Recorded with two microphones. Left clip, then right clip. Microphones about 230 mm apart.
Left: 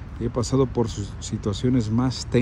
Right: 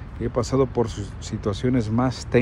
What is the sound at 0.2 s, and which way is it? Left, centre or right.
Speech, centre.